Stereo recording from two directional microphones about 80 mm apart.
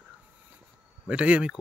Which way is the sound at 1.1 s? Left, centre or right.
Centre.